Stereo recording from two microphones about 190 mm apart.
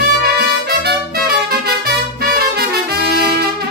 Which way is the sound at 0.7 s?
55° right (ahead or behind).